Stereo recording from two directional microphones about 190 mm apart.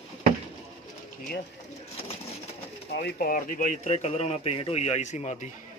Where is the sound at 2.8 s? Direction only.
60° left (ahead or behind); by 5.4 s 40° left (ahead or behind).